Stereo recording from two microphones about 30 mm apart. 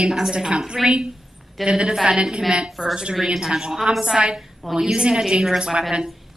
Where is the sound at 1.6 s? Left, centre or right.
Right.